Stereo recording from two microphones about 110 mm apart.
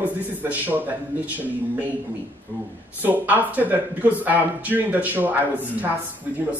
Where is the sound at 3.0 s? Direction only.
15° right (ahead or behind).